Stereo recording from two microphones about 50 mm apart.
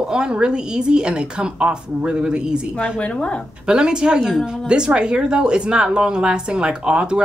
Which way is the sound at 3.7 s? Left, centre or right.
Centre.